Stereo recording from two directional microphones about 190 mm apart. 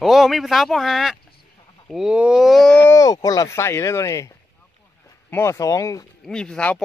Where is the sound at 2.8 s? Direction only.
20° left (ahead or behind).